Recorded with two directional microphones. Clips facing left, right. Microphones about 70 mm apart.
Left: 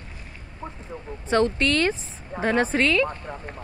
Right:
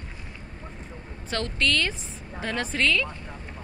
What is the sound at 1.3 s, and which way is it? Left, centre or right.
A woman's voice, left.